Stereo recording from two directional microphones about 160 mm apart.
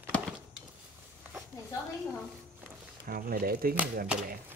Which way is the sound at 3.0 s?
65° right (ahead or behind).